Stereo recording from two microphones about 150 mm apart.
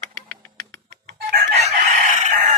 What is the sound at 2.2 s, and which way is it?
Chicken, 60° right (ahead or behind).